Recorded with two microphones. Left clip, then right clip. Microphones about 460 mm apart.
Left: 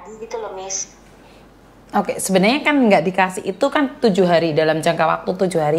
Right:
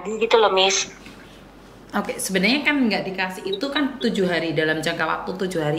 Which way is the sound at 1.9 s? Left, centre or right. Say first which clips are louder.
Left 6 dB; left.